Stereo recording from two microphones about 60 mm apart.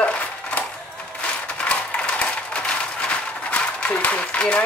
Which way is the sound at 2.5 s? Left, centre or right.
Centre.